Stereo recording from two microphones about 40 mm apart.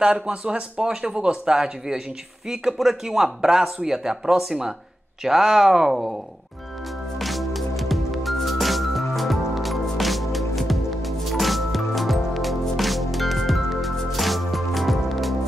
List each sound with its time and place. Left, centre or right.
0.0 s speech: right
2.5 s speech: centre
7.2 s music: centre